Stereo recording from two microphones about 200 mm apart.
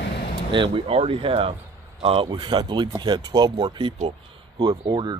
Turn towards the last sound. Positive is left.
turn(degrees=-20)  # may be behind; listen again after turning